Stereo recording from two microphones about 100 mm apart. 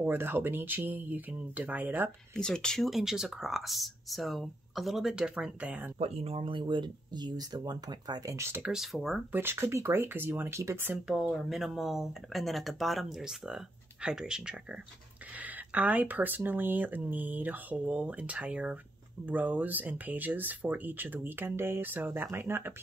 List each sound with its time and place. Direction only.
0.0 s speech: 20° right (ahead or behind)
2.3 s speech: 5° left (ahead or behind); by 5.9 s 10° right (ahead or behind)
5.9 s speech: 90° right; by 8.4 s 45° right (ahead or behind)
8.4 s speech: 25° right (ahead or behind)
8.7 s speech: centre (ahead or behind)
9.3 s speech: 20° right (ahead or behind)
11.1 s speech: 5° right (ahead or behind); by 22.8 s 25° right (ahead or behind)